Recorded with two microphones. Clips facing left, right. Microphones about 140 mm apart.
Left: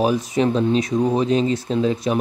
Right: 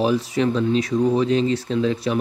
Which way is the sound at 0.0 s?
15° left (ahead or behind).